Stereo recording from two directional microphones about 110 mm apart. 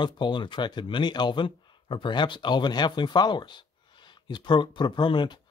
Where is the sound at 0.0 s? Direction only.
45° left (ahead or behind).